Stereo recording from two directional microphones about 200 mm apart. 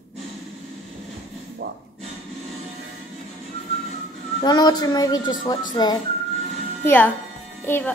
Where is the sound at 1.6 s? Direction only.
55° right (ahead or behind).